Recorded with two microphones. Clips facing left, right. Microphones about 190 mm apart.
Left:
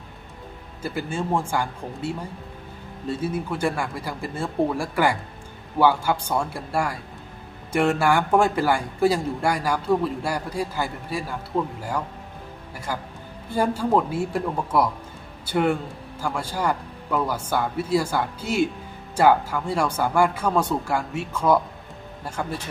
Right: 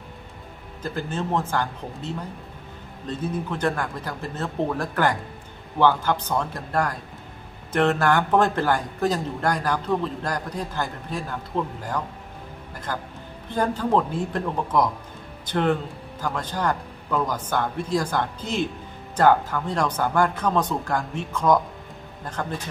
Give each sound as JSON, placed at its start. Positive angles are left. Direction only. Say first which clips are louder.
{"t": 0.8, "sound": "a man's voice", "louder": "left 1 dB", "side_deg": 10}